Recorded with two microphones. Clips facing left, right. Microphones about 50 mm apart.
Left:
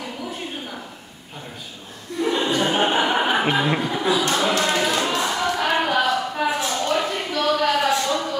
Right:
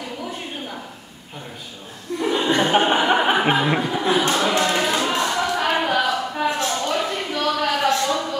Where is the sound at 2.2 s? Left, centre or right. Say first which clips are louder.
Right 1 dB; centre.